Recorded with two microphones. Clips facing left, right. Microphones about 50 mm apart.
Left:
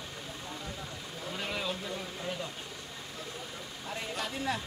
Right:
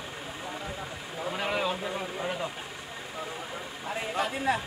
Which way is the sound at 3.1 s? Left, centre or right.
Right.